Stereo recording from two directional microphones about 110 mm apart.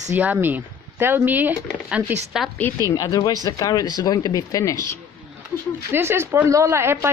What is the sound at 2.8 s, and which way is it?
Speech, 35° left (ahead or behind).